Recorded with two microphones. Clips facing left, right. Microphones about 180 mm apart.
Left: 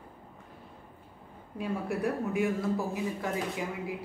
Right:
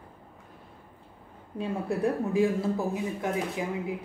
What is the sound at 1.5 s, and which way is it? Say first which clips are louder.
Speech: right 2 dB; 30° right (ahead or behind).